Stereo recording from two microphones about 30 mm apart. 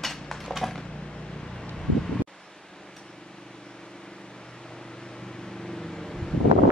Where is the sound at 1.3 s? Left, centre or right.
Left.